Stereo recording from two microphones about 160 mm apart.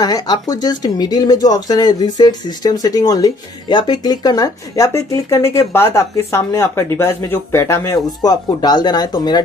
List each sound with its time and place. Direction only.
0.0 s speech: 25° left (ahead or behind)